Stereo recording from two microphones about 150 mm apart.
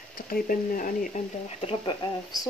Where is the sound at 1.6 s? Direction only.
35° left (ahead or behind).